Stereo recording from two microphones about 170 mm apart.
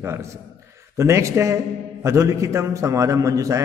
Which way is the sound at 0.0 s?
15° right (ahead or behind).